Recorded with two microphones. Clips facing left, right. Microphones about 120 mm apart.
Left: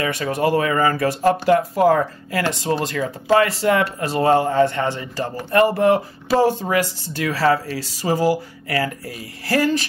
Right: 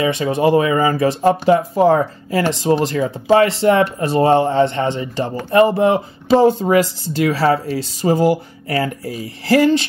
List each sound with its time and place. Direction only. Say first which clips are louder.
0.0 s speech: right 5 dB; 20° right (ahead or behind)